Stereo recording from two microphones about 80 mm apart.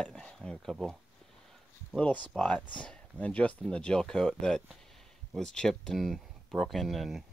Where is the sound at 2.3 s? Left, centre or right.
Centre.